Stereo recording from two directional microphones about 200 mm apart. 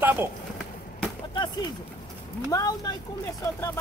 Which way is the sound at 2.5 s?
20° left (ahead or behind).